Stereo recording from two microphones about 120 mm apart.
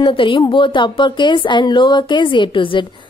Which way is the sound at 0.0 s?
45° left (ahead or behind).